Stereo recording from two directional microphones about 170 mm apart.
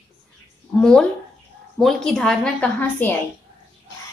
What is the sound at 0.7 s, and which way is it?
Speech, 5° left (ahead or behind).